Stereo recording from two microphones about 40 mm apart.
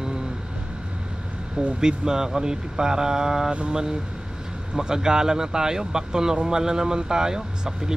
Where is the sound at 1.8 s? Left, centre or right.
Centre.